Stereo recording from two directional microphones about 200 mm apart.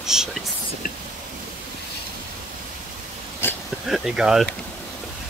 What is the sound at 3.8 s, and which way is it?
Speech, centre (ahead or behind).